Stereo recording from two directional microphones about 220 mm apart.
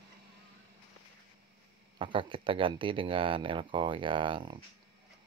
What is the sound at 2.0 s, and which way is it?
Speech, 25° right (ahead or behind).